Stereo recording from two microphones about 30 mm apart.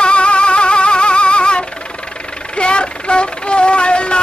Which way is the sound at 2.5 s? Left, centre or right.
Left.